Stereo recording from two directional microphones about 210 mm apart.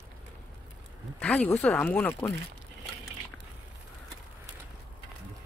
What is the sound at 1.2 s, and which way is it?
Speech, 5° left (ahead or behind).